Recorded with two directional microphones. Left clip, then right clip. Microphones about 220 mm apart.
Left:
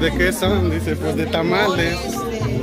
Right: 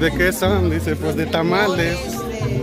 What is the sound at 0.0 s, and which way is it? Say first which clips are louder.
Speech: right 1 dB; 30° right (ahead or behind).